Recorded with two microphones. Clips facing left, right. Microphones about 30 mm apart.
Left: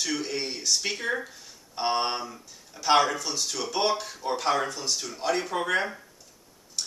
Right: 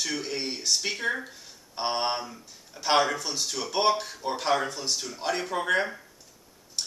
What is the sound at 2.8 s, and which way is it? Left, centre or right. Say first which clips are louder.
Speech: left 2 dB; centre.